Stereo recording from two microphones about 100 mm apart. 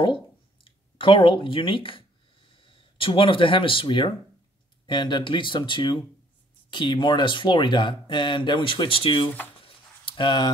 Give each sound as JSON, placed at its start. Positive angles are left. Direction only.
{"t": 0.7, "sound": "speech", "side_deg": 60}